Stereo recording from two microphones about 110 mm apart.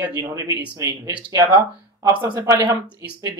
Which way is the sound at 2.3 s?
30° right (ahead or behind).